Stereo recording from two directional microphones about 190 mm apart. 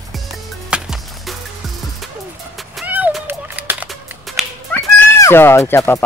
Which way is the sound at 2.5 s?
5° right (ahead or behind).